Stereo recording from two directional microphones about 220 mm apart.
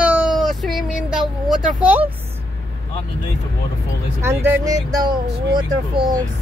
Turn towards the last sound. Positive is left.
turn(degrees=-20)  # may be behind; listen again after turning